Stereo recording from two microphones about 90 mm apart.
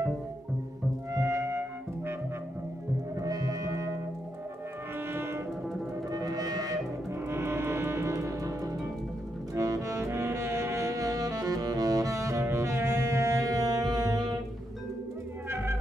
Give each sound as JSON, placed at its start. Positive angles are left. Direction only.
{"t": 1.1, "sound": "music", "side_deg": -35}
{"t": 3.2, "sound": "music", "side_deg": -40}
{"t": 5.1, "sound": "music", "side_deg": -25}
{"t": 6.0, "sound": "music", "side_deg": -45}
{"t": 7.2, "sound": "music", "side_deg": -30}
{"t": 9.6, "sound": "saxophone", "side_deg": -35}
{"t": 15.5, "sound": "music", "side_deg": -30}